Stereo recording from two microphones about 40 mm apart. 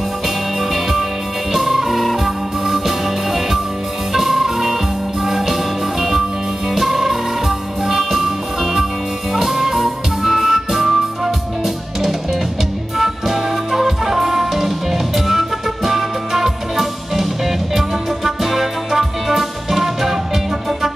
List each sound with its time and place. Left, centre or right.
0.6 s music: centre
9.3 s music: centre